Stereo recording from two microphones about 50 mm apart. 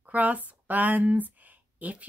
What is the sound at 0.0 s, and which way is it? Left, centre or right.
Speech, right.